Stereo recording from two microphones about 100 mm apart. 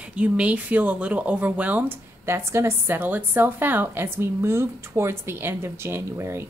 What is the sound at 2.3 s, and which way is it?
A woman's voice, 30° right (ahead or behind).